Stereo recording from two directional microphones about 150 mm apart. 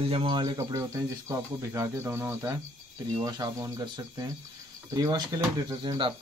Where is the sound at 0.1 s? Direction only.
35° right (ahead or behind).